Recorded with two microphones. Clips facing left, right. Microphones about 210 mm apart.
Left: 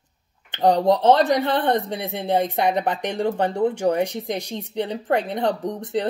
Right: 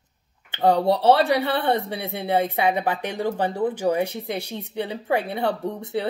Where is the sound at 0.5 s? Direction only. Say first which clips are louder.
Left 2 dB; 10° right (ahead or behind).